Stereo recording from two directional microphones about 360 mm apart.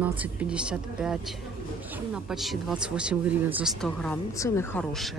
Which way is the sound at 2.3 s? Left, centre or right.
Centre.